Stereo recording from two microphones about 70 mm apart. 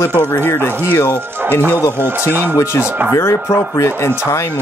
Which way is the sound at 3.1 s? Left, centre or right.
Left.